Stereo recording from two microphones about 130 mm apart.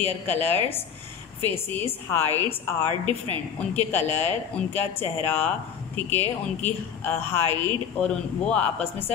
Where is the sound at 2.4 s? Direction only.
40° right (ahead or behind).